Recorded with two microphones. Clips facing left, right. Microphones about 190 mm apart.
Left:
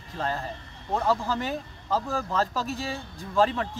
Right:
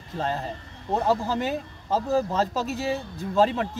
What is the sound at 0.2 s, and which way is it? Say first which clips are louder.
Speech: right 2 dB; 20° right (ahead or behind).